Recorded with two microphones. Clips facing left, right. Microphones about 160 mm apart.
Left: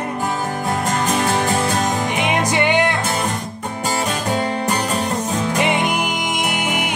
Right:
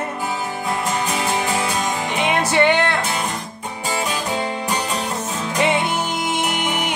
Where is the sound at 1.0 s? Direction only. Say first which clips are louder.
Left 3 dB; 50° left (ahead or behind).